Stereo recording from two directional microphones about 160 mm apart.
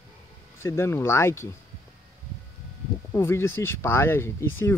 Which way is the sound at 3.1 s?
15° left (ahead or behind).